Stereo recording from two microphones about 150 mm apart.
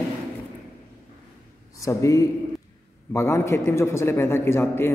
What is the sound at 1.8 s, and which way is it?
A man's voice, 20° left (ahead or behind).